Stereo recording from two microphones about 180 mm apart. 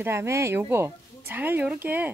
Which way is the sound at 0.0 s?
15° right (ahead or behind).